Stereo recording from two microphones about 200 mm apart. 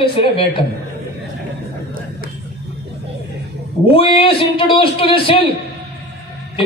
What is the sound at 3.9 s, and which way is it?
A man's voice, 25° left (ahead or behind).